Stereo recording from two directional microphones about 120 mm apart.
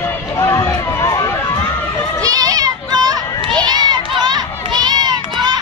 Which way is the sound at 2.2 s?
30° right (ahead or behind).